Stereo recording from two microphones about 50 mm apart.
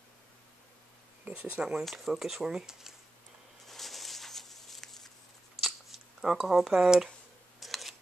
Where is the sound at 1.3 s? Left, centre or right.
Right.